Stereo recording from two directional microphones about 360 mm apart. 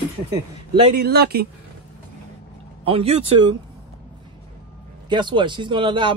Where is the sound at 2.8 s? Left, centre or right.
Centre.